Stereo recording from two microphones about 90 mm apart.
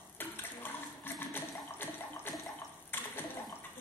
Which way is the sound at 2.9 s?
25° left (ahead or behind).